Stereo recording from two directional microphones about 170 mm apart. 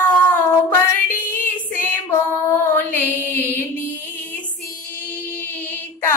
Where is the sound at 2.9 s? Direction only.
15° left (ahead or behind).